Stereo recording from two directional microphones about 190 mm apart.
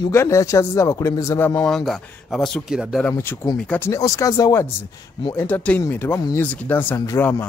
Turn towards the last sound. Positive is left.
turn(degrees=10)  # may be behind; listen again after turning